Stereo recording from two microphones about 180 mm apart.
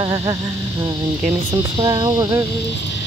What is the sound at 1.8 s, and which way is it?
Speech, 25° right (ahead or behind).